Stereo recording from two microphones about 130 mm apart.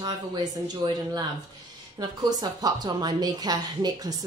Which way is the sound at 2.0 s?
30° right (ahead or behind).